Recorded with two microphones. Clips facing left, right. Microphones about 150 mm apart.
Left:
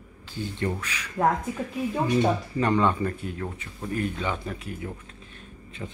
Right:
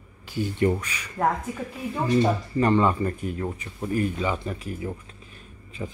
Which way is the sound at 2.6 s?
5° right (ahead or behind).